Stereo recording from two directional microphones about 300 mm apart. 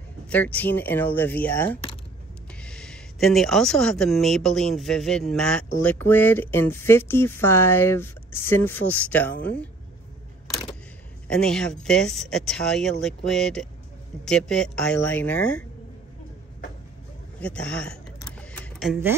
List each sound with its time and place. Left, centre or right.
0.3 s speech: centre
11.2 s speech: centre
17.4 s speech: centre
18.4 s keys jangling: centre